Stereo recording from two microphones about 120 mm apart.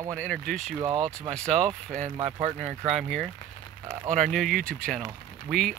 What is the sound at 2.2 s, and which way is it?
Speech, 65° right (ahead or behind).